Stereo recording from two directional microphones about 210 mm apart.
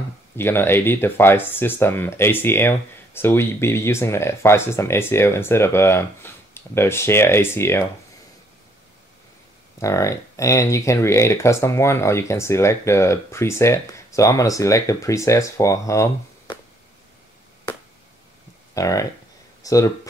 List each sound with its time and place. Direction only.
0.4 s speech: 10° left (ahead or behind)
9.8 s speech: 15° left (ahead or behind)
18.8 s speech: 15° left (ahead or behind)